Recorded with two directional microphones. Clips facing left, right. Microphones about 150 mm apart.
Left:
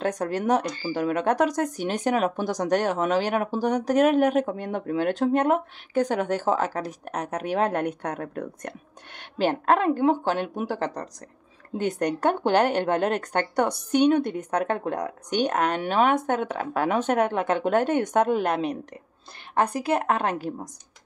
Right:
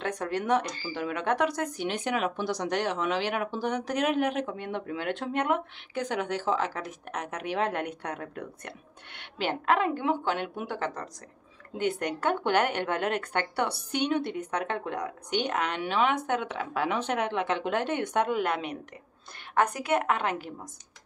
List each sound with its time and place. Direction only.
0.0 s speech: 40° left (ahead or behind)